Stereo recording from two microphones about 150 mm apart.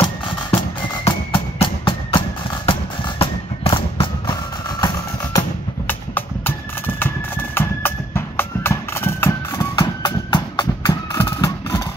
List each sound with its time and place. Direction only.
0.5 s music: 35° left (ahead or behind)
5.9 s music: 10° left (ahead or behind); by 11.0 s 30° left (ahead or behind)
11.2 s a sound: 25° left (ahead or behind)